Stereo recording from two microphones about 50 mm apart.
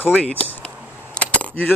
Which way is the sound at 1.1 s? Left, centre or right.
Left.